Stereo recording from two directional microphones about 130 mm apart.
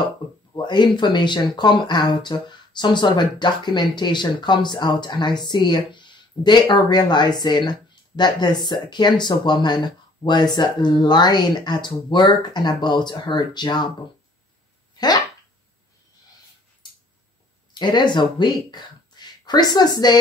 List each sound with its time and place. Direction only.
0.5 s speech: 35° left (ahead or behind)
15.0 s dog: 30° left (ahead or behind)
17.7 s speech: 35° left (ahead or behind)